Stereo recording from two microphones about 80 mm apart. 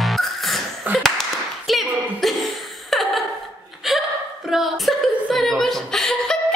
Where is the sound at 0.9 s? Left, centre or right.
Right.